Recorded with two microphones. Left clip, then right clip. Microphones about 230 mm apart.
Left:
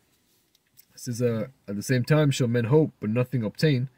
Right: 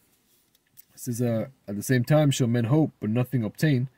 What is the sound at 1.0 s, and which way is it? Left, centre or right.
Speech, right.